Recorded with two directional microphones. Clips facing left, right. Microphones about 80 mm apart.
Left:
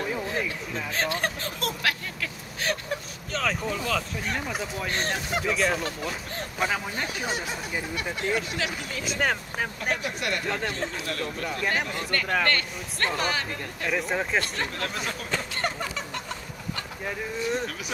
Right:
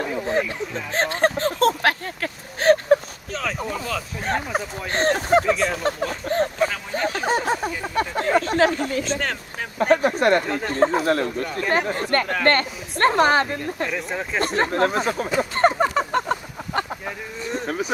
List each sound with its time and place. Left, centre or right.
0.3 s a sound: right
3.3 s speech: centre
4.2 s speech: right
5.4 s speech: centre
5.9 s speech: right
9.2 s speech: centre
9.8 s speech: right
10.4 s speech: centre
10.7 s speech: right
13.8 s speech: centre
14.4 s speech: right
15.5 s fowl: right
17.0 s a sound: centre
17.6 s a sound: right